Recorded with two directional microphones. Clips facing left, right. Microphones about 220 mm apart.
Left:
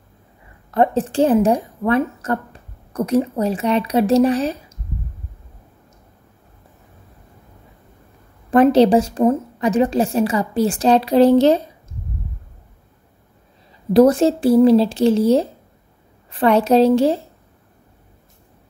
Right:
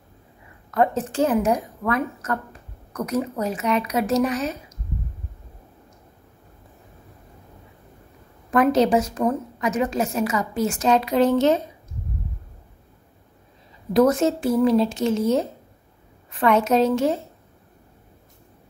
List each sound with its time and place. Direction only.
0.7 s a woman's voice: 30° left (ahead or behind)
8.5 s a woman's voice: 30° left (ahead or behind)
13.9 s a woman's voice: 30° left (ahead or behind)